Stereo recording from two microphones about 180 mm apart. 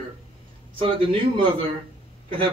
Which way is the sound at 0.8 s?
30° right (ahead or behind).